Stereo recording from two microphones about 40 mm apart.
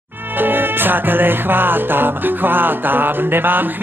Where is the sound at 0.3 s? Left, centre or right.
Right.